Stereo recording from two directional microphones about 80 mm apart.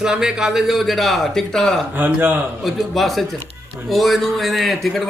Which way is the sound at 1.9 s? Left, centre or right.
Right.